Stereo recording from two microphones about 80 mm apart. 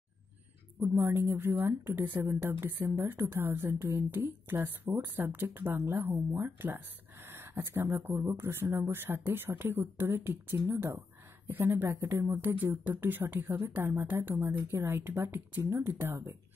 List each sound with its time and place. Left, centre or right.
0.7 s speech: right
7.2 s a sound: right
7.7 s speech: right